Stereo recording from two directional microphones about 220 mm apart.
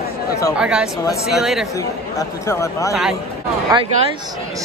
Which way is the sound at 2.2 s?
15° left (ahead or behind).